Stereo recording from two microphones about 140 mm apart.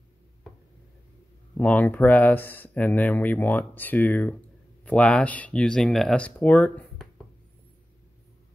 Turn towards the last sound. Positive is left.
turn(degrees=10)  # may be behind; listen again after turning